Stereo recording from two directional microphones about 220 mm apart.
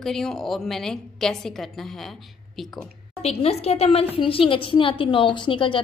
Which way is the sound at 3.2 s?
25° left (ahead or behind).